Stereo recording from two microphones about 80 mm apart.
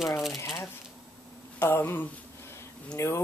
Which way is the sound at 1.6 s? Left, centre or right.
Left.